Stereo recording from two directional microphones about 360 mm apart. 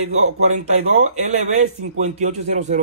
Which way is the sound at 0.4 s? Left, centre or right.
Centre.